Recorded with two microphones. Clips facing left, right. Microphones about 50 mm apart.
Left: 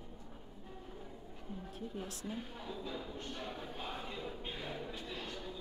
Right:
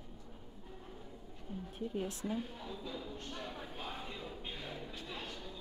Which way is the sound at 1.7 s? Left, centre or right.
Right.